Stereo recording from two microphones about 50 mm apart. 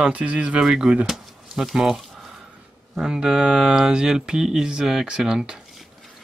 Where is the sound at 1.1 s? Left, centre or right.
Centre.